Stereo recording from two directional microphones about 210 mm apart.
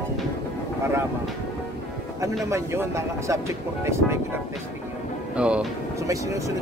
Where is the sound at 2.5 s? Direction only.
15° right (ahead or behind).